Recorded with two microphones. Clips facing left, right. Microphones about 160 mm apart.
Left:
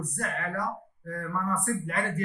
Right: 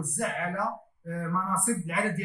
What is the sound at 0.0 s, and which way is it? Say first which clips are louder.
Speech: right 2 dB; 10° right (ahead or behind).